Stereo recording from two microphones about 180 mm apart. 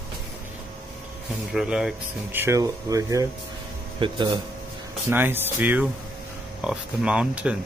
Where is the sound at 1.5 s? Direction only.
5° right (ahead or behind); by 4.4 s 25° right (ahead or behind).